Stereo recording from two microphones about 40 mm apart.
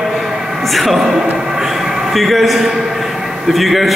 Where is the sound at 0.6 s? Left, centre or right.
Centre.